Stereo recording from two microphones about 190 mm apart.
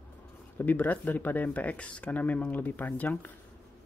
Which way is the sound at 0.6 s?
10° left (ahead or behind).